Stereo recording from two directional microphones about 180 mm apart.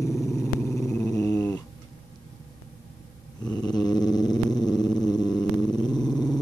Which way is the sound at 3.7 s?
20° left (ahead or behind).